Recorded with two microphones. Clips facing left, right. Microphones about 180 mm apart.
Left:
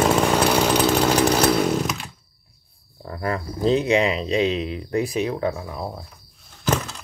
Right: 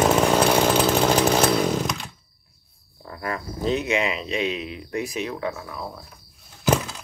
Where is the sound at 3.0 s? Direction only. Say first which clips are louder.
Left 4 dB; 35° left (ahead or behind).